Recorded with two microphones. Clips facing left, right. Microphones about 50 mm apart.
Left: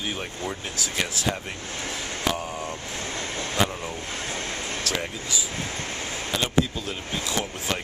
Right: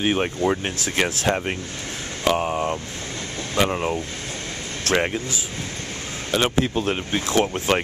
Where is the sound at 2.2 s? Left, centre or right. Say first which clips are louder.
Right 9 dB; right.